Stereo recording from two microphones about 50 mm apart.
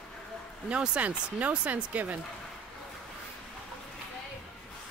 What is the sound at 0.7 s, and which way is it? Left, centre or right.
Speech, right.